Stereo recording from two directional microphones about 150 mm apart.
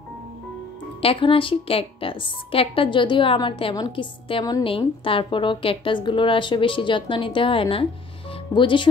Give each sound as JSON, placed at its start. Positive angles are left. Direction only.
{"t": 1.0, "sound": "a woman's voice", "side_deg": 35}
{"t": 8.3, "sound": "music", "side_deg": 35}